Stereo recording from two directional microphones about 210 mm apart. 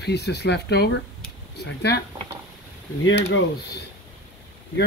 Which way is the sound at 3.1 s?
55° left (ahead or behind).